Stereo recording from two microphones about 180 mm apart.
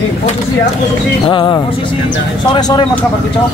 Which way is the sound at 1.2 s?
25° left (ahead or behind).